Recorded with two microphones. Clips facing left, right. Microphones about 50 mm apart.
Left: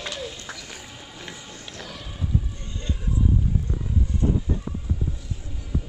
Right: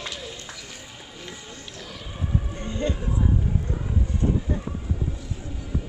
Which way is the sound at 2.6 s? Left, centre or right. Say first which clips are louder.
Right 7 dB; right.